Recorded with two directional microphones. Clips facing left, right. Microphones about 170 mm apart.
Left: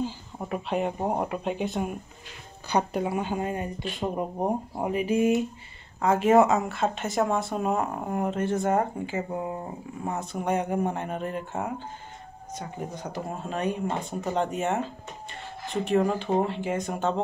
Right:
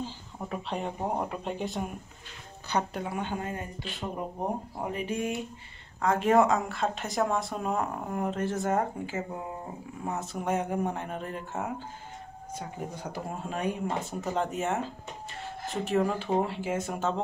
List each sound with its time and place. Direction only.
0.0 s speech: 10° left (ahead or behind)
4.9 s speech: 5° left (ahead or behind)